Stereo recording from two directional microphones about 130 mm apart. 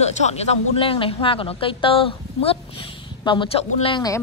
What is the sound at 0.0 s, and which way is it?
Speech, 55° left (ahead or behind).